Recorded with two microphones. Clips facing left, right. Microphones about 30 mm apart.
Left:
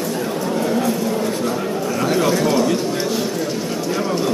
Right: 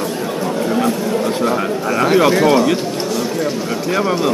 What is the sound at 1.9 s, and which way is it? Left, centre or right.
Bird, right.